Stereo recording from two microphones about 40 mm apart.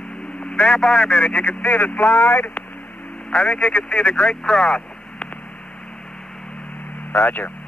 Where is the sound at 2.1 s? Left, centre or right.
Left.